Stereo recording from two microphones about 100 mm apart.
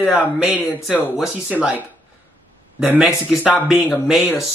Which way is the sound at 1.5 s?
5° right (ahead or behind).